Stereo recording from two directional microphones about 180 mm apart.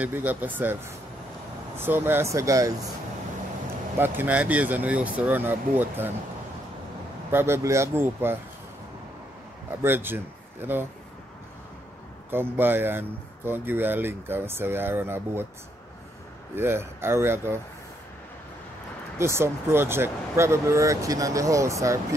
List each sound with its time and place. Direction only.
0.0 s speech: 10° right (ahead or behind)
1.8 s speech: 10° right (ahead or behind)
4.0 s speech: 10° right (ahead or behind)
7.2 s speech: 15° right (ahead or behind)
9.8 s speech: 10° right (ahead or behind)
12.3 s speech: 10° right (ahead or behind)
16.5 s speech: 15° right (ahead or behind)
19.1 s speech: 15° right (ahead or behind)